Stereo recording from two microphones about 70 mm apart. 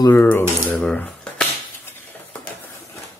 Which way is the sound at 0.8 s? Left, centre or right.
Centre.